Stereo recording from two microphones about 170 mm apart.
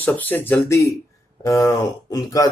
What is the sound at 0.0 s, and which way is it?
Speech, 10° left (ahead or behind).